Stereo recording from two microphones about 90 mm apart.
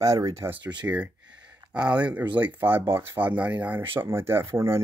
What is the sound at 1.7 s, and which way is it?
Speech, 15° right (ahead or behind).